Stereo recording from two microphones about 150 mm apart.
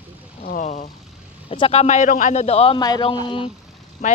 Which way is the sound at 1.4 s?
40° left (ahead or behind).